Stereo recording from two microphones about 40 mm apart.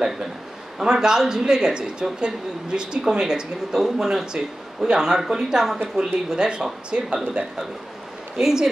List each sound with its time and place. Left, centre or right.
0.7 s speech: centre
8.4 s speech: centre